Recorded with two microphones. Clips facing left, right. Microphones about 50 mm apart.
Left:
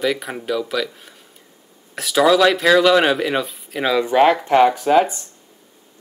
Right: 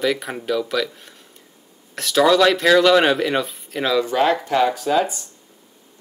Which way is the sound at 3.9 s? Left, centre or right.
Left.